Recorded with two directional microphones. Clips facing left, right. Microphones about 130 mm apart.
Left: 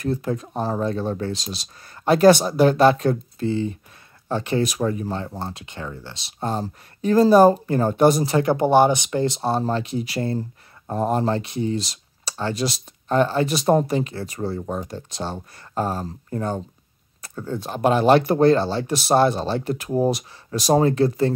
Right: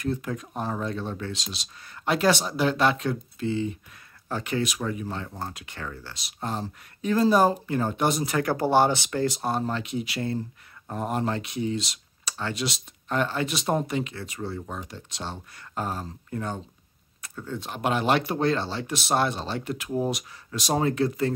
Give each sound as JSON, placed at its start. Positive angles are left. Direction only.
{"t": 0.0, "sound": "speech", "side_deg": 35}
{"t": 8.4, "sound": "speech", "side_deg": 20}